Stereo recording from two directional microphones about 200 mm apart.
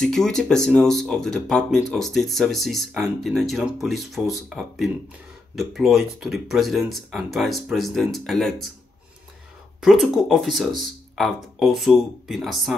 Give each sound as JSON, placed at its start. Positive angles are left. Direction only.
{"t": 0.0, "sound": "speech", "side_deg": 0}
{"t": 9.8, "sound": "speech", "side_deg": 0}